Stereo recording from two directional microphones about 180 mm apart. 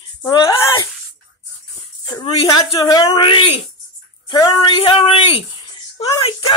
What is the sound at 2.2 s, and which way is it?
Speech, 25° left (ahead or behind).